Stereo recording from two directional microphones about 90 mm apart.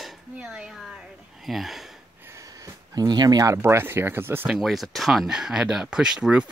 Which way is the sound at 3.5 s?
30° right (ahead or behind).